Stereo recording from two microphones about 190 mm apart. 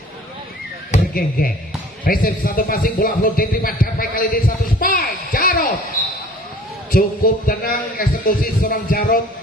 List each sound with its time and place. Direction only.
0.9 s speech: 50° left (ahead or behind)
6.9 s speech: 50° left (ahead or behind)